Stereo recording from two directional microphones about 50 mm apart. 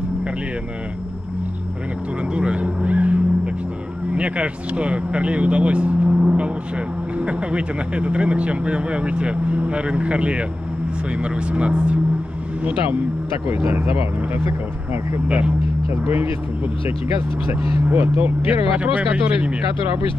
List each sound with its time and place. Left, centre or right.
2.3 s vehicle: right
4.1 s speech: right
13.5 s speech: right
15.2 s speech: right
15.9 s speech: right
17.6 s speech: right